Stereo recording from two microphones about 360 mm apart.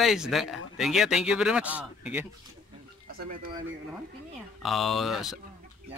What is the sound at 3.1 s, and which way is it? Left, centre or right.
Speech, right.